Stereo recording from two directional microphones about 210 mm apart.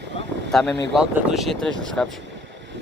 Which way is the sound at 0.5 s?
Centre (ahead or behind).